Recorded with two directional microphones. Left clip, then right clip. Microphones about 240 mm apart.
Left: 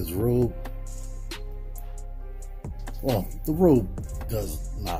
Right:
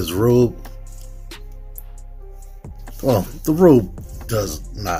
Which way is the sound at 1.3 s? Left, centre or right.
Centre.